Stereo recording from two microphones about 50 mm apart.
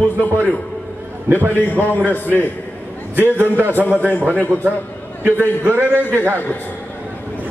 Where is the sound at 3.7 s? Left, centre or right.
Left.